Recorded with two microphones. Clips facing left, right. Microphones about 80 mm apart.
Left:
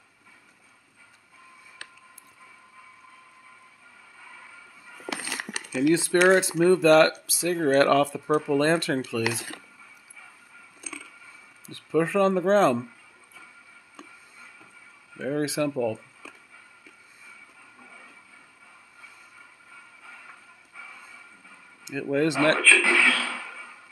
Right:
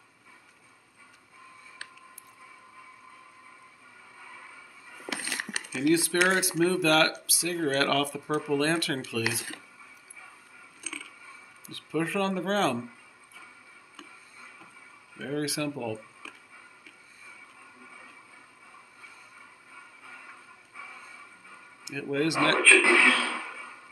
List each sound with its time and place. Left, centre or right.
5.9 s speech: left
11.7 s speech: left
15.1 s speech: left
21.8 s speech: left
22.6 s speech: centre